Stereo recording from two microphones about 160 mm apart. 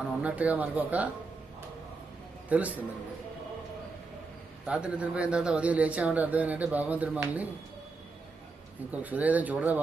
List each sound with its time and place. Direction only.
0.2 s a man's voice: 10° right (ahead or behind)
2.5 s a man's voice: 10° right (ahead or behind)
4.6 s a man's voice: 5° right (ahead or behind)
8.9 s a man's voice: 10° right (ahead or behind)